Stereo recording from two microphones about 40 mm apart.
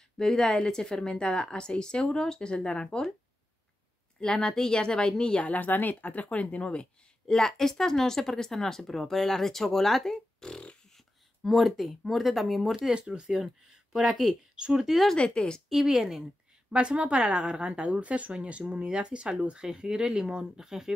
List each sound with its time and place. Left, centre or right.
0.2 s a woman's voice: centre
4.2 s a woman's voice: centre
5.4 s speech: left
7.2 s speech: centre
11.4 s speech: centre
12.9 s speech: right
14.0 s speech: centre
14.5 s speech: centre
15.1 s a woman's voice: left
15.7 s speech: centre
16.7 s speech: right; by 20.9 s centre